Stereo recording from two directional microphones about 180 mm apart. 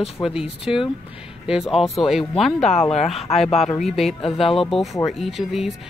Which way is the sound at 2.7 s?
35° left (ahead or behind).